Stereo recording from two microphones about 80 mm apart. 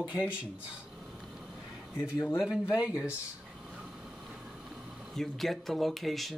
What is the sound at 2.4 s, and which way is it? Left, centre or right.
Speech, centre.